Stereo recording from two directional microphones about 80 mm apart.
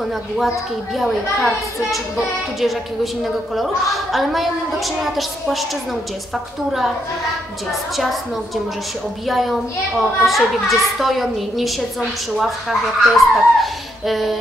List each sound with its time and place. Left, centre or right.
0.9 s a child's voice: centre
7.9 s a child's voice: centre
9.3 s a child's voice: centre